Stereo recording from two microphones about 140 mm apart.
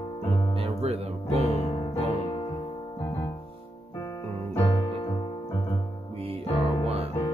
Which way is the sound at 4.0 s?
25° left (ahead or behind).